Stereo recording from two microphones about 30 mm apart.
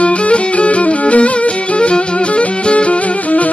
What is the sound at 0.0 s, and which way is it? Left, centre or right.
Music, left.